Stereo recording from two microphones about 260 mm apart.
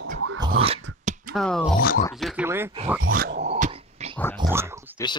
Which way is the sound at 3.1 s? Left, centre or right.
Right.